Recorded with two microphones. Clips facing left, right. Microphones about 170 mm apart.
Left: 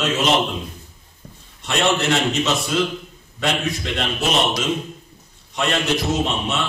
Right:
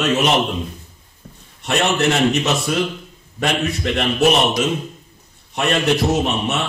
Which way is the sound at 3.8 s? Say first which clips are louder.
Right 7 dB; 55° right (ahead or behind).